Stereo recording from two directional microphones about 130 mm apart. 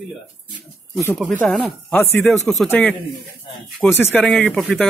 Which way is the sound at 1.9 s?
10° left (ahead or behind).